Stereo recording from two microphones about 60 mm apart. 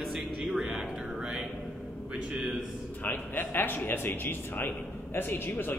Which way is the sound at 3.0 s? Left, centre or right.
Left.